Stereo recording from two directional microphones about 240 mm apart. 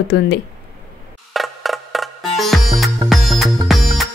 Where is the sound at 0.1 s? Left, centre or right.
Left.